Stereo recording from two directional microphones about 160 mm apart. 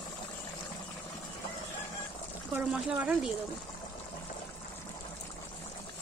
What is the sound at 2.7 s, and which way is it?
Speech, 5° right (ahead or behind).